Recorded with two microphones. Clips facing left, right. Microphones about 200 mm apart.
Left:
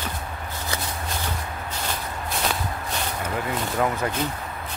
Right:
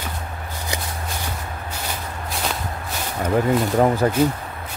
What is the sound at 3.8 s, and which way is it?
Speech, 35° right (ahead or behind).